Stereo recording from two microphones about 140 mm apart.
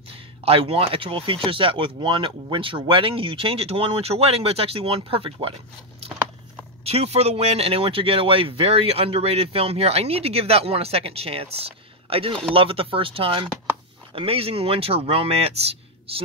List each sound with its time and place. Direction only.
0.1 s speech: 40° right (ahead or behind)
6.8 s speech: 50° right (ahead or behind)